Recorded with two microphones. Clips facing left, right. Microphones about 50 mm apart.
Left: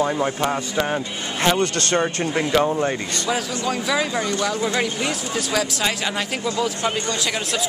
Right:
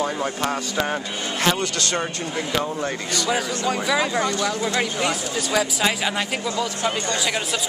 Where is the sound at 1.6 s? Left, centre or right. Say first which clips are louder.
Left 4 dB; left.